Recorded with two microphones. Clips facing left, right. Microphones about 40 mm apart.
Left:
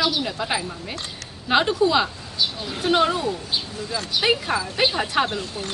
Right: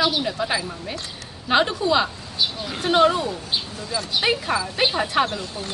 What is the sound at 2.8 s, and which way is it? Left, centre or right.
A woman's voice, centre.